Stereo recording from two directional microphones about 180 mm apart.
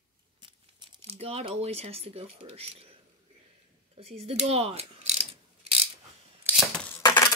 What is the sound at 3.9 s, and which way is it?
Speech, 35° right (ahead or behind).